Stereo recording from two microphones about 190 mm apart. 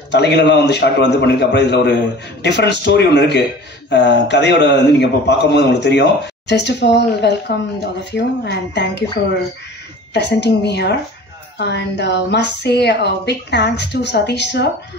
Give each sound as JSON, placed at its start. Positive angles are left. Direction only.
{"t": 0.1, "sound": "a man's voice", "side_deg": 65}
{"t": 10.1, "sound": "a man's voice", "side_deg": 60}